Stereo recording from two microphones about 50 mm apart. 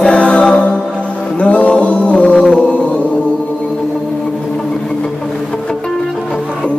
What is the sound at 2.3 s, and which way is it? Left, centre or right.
Music, centre.